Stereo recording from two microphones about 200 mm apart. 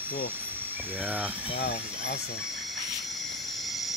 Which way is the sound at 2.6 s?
Centre (ahead or behind).